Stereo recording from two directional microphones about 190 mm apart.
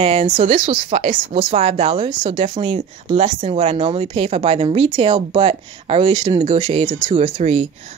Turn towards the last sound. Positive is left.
turn(degrees=-35)  # may be behind; listen again after turning